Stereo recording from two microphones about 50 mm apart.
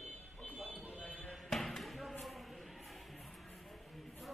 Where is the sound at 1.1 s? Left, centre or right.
Left.